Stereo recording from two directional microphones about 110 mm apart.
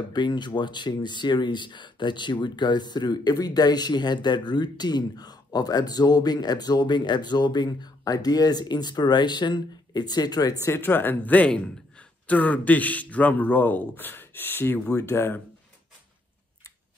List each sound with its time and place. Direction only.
0.1 s speech: 45° left (ahead or behind)
10.6 s speech: 20° left (ahead or behind)